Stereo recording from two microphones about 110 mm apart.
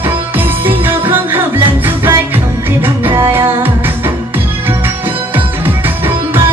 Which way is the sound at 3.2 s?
20° right (ahead or behind).